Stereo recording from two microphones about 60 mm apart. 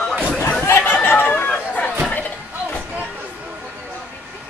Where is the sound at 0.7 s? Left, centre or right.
Left.